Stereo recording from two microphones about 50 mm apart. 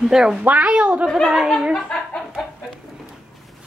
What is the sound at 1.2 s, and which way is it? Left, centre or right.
Laughter, centre.